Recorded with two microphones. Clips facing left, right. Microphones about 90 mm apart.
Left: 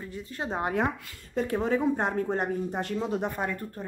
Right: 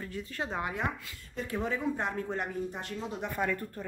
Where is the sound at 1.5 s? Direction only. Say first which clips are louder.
Left 5 dB; 40° left (ahead or behind).